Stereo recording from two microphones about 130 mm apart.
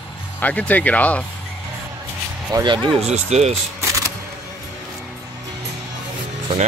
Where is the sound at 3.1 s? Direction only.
60° right (ahead or behind).